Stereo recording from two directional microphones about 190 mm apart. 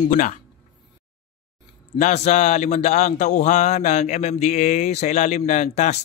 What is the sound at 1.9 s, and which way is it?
Speech, 35° left (ahead or behind).